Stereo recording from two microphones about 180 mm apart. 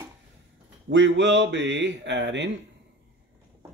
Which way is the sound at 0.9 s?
80° right.